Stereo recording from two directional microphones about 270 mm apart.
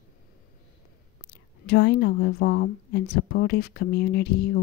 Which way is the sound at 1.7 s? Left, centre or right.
Left.